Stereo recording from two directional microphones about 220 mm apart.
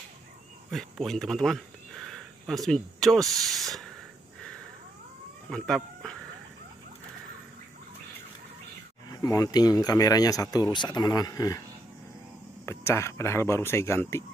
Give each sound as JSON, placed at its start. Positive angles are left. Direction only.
{"t": 0.7, "sound": "speech", "side_deg": 0}
{"t": 5.5, "sound": "speech", "side_deg": 0}
{"t": 9.1, "sound": "speech", "side_deg": 15}
{"t": 12.6, "sound": "speech", "side_deg": 10}